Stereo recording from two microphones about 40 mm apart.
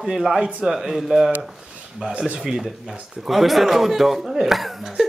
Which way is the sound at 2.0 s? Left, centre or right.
Right.